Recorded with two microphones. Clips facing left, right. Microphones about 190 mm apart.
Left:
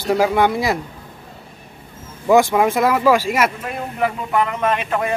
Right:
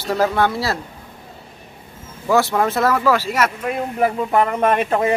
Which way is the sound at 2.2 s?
15° left (ahead or behind).